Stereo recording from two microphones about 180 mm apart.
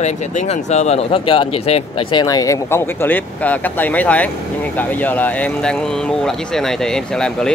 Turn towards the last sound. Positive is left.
turn(degrees=5)  # may be behind; listen again after turning